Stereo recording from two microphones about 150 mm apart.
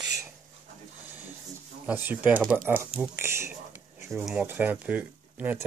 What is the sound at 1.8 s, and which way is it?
Speech, 15° right (ahead or behind).